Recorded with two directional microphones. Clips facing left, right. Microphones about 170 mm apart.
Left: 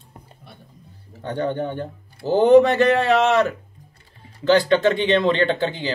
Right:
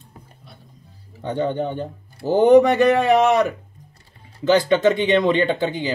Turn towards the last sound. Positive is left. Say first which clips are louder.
# right 1 dB
turn(degrees=-15)  # may be behind; listen again after turning